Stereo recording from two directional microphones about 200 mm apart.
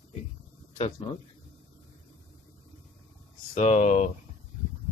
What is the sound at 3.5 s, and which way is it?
Speech, 35° left (ahead or behind).